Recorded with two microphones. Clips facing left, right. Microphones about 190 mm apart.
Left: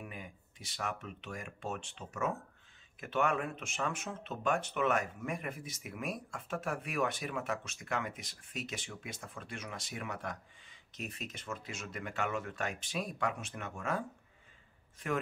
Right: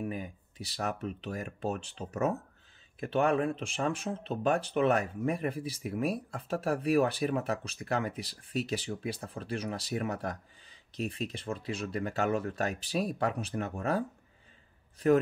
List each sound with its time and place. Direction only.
0.0 s speech: 35° right (ahead or behind)